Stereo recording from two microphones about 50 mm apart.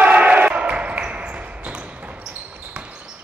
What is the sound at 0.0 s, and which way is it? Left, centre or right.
Basketball bounce, right.